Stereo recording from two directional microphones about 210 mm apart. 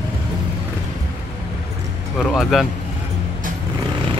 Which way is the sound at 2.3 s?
Centre (ahead or behind).